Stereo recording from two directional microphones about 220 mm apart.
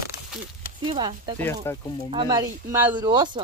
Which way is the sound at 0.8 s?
20° right (ahead or behind).